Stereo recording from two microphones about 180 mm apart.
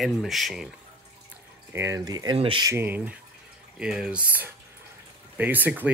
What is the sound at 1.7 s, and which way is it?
Speech, 15° right (ahead or behind).